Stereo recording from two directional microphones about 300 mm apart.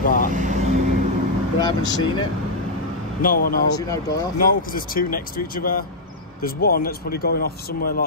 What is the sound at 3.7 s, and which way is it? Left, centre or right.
Speech, centre.